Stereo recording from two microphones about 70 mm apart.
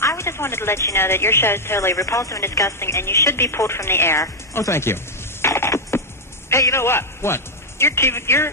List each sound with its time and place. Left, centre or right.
0.0 s a sound: left
0.9 s speech: left
2.0 s a man's voice: left